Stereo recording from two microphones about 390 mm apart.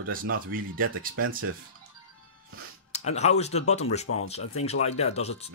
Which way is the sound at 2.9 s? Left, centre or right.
Centre.